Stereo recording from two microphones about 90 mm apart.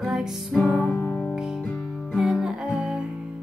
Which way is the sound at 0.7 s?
25° left (ahead or behind).